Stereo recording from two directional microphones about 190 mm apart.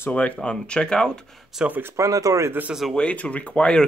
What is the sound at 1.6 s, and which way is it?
Speech, 10° right (ahead or behind).